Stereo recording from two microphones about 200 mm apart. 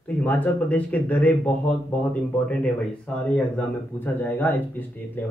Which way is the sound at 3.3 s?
5° left (ahead or behind).